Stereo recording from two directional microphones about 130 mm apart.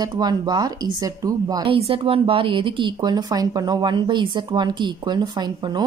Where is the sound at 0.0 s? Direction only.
30° right (ahead or behind).